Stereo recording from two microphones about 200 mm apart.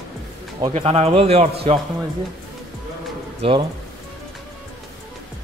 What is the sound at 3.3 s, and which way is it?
Speech, 25° right (ahead or behind).